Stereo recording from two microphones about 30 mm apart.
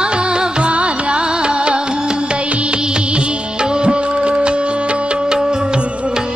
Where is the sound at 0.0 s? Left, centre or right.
Right.